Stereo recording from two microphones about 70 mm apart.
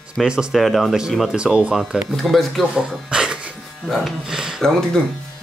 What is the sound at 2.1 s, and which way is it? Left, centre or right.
Speech, centre.